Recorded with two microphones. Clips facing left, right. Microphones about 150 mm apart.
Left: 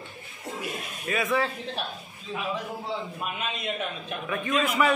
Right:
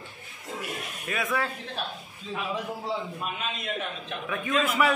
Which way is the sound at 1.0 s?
Centre (ahead or behind).